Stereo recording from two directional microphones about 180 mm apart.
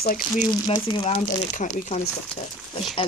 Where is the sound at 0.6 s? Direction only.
30° left (ahead or behind).